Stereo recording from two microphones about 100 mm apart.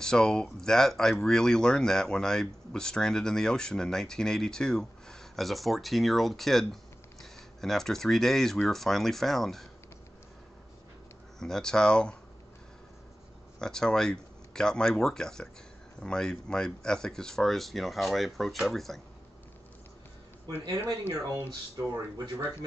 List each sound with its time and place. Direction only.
0.0 s speech: 5° left (ahead or behind)
11.3 s speech: 5° left (ahead or behind)
13.6 s speech: 5° left (ahead or behind)
21.1 s speech: 30° right (ahead or behind)